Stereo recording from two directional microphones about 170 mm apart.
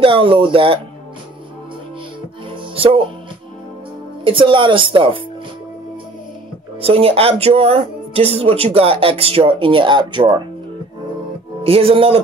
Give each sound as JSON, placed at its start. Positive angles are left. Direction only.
{"t": 0.0, "sound": "speech", "side_deg": -30}
{"t": 2.5, "sound": "music", "side_deg": -35}
{"t": 4.2, "sound": "speech", "side_deg": -30}
{"t": 6.8, "sound": "speech", "side_deg": -35}
{"t": 11.6, "sound": "speech", "side_deg": -35}